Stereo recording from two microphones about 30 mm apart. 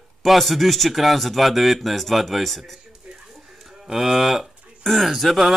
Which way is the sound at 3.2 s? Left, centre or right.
Centre.